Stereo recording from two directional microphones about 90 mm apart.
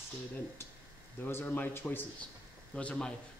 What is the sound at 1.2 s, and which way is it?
A man's voice, 25° left (ahead or behind).